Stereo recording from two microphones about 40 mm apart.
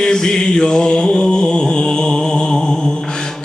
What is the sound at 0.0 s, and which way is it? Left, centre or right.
Mantra, centre.